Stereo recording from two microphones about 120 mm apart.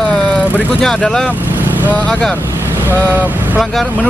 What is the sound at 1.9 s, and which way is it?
Speech, 10° left (ahead or behind).